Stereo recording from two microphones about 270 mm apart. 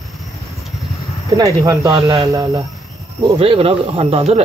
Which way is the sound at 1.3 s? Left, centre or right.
Centre.